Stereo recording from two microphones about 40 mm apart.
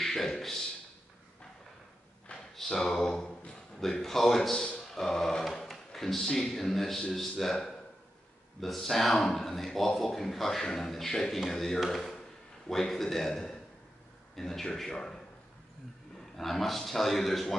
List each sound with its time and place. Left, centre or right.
0.0 s a man's voice: centre
2.5 s a man's voice: centre
16.3 s a man's voice: centre